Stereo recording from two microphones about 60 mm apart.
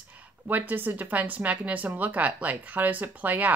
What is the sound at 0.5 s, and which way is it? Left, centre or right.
Speech, right.